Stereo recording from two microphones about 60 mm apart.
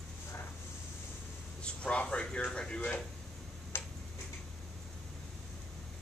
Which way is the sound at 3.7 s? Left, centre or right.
Left.